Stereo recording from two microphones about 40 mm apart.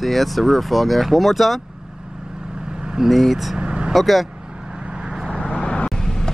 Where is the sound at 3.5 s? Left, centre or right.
Right.